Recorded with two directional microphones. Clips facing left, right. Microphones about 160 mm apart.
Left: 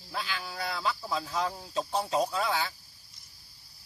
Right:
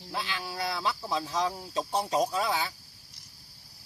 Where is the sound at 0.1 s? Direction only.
20° right (ahead or behind).